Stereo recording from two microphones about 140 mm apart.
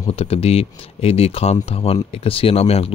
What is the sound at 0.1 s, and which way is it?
Speech, 45° left (ahead or behind).